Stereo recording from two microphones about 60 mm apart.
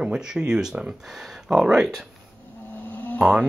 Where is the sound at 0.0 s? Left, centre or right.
Centre.